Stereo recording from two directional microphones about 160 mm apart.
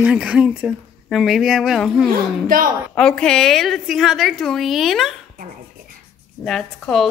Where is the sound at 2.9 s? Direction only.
5° left (ahead or behind).